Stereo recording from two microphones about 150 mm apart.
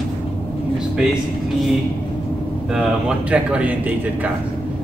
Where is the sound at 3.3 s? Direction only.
10° right (ahead or behind).